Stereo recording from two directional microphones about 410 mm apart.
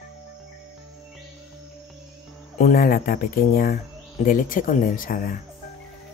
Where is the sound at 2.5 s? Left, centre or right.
Centre.